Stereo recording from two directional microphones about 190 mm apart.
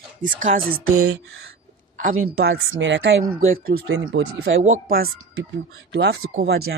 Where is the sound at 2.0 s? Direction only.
55° right (ahead or behind).